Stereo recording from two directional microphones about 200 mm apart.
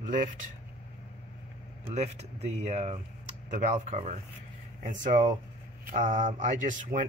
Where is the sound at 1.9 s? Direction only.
35° right (ahead or behind).